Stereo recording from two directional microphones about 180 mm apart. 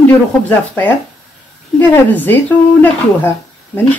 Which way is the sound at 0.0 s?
10° left (ahead or behind).